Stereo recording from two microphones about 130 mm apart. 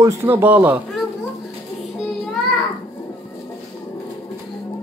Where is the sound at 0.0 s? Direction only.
20° right (ahead or behind).